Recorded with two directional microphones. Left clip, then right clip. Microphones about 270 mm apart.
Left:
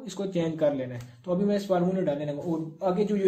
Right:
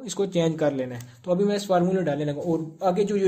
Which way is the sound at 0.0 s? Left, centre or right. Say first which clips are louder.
Right 6 dB; right.